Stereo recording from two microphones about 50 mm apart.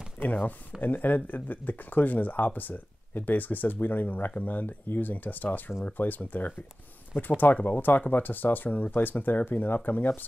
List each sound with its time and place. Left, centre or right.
0.2 s speech: left